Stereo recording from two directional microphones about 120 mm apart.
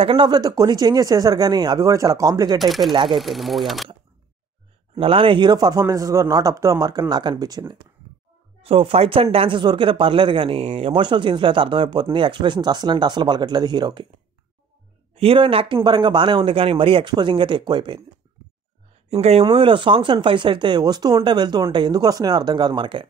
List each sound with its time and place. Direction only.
0.0 s a man's voice: 45° right (ahead or behind)
2.6 s speech: centre (ahead or behind)
2.9 s speech: 40° right (ahead or behind)
3.2 s speech: centre (ahead or behind)
4.9 s a man's voice: 50° right (ahead or behind); by 7.6 s 35° right (ahead or behind)
8.6 s speech: 50° right (ahead or behind)
15.1 s speech: 50° right (ahead or behind)
19.4 s a man's voice: 45° right (ahead or behind)